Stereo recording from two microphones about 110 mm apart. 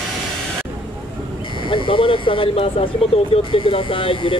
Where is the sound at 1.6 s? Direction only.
50° left (ahead or behind).